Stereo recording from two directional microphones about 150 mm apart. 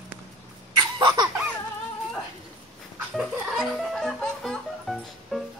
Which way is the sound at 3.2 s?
Centre (ahead or behind).